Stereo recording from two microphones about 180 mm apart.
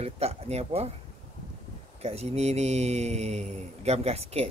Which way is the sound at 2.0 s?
35° right (ahead or behind).